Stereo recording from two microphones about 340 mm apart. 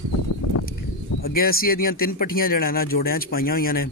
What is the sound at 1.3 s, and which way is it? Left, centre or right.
Speech, left.